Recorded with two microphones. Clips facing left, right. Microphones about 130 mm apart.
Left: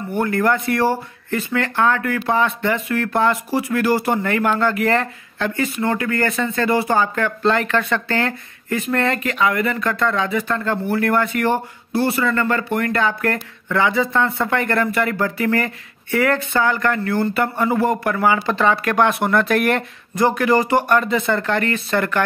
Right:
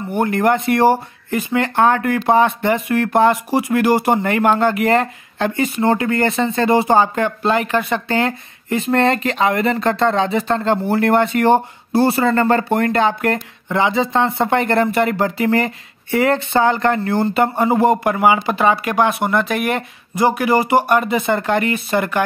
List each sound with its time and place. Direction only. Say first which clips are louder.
0.1 s speech: right 2 dB; 20° right (ahead or behind)